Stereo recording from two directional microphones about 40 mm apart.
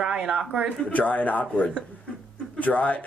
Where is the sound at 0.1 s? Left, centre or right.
Centre.